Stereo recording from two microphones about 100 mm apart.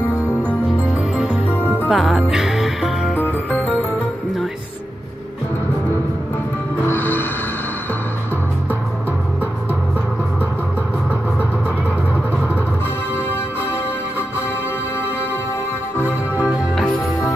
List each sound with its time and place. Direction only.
1.9 s music: centre (ahead or behind)
3.2 s music: 10° left (ahead or behind)
6.9 s music: 20° left (ahead or behind)
16.0 s music: 30° left (ahead or behind)